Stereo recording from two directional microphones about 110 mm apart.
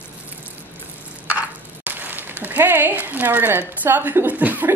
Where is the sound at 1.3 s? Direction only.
15° right (ahead or behind).